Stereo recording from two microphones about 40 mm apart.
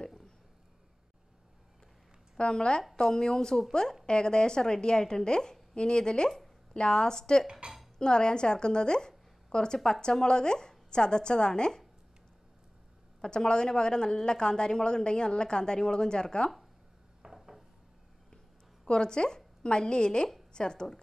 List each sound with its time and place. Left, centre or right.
2.3 s a woman's voice: left
13.2 s a woman's voice: centre
17.2 s dishes: centre
18.9 s a woman's voice: left